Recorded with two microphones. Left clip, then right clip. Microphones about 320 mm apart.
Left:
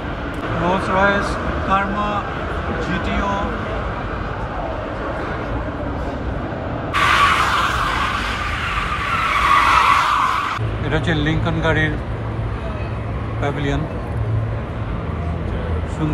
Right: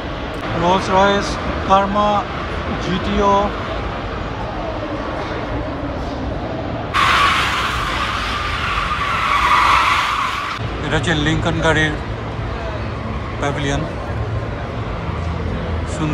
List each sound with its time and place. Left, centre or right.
0.7 s speech: centre
7.0 s a sound: centre
7.9 s vehicle: left
8.5 s vehicle: centre
10.9 s speech: centre
13.4 s speech: centre